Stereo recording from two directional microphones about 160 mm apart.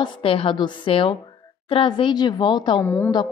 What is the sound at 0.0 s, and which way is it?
A woman's voice, 35° left (ahead or behind).